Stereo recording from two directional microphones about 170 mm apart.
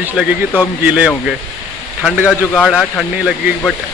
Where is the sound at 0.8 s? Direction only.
5° right (ahead or behind).